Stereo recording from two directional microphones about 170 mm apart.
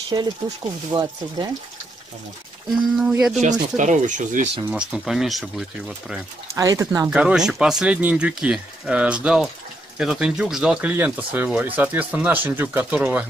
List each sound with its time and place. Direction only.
0.1 s speech: 25° right (ahead or behind)
0.9 s speech: 10° right (ahead or behind)
2.7 s speech: 5° right (ahead or behind)
3.3 s speech: 45° right (ahead or behind)
4.6 s speech: 5° right (ahead or behind)
6.5 s speech: 20° right (ahead or behind)
7.1 s speech: 5° right (ahead or behind)